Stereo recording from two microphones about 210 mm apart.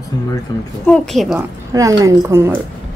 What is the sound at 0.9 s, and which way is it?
Speech, centre (ahead or behind).